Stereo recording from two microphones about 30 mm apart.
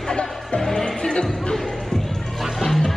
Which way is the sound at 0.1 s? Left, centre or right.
Left.